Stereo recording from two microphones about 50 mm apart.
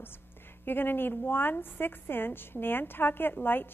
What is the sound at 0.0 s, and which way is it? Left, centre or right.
A woman's voice, left.